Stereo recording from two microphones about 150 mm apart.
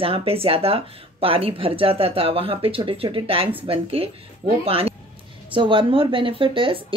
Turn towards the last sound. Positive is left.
turn(degrees=-35)  # may be behind; listen again after turning